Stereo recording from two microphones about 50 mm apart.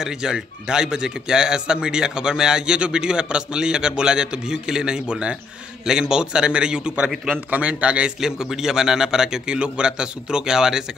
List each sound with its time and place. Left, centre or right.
0.0 s a man's voice: centre
7.3 s a man's voice: right
8.2 s speech: centre